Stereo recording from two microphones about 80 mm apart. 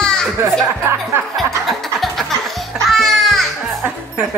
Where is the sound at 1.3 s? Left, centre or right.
Centre.